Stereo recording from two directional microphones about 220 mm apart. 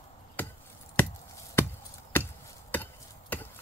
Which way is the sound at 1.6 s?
10° left (ahead or behind).